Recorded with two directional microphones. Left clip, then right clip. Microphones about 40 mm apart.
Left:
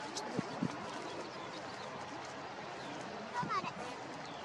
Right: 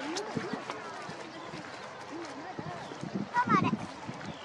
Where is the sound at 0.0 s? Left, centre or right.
Right.